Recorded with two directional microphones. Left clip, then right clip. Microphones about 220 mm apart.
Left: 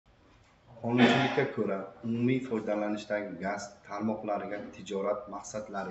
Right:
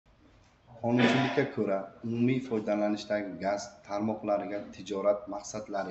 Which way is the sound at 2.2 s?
45° right (ahead or behind).